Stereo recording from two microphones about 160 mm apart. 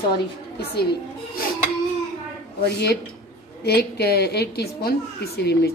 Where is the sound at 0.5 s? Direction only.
90° left.